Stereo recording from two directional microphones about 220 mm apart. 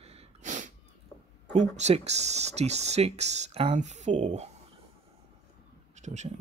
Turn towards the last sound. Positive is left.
turn(degrees=-30)  # may be behind; listen again after turning